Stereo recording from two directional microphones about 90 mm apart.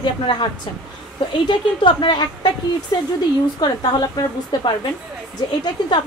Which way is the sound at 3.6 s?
50° left (ahead or behind).